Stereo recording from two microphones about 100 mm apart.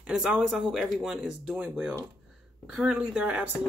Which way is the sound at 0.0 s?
10° right (ahead or behind).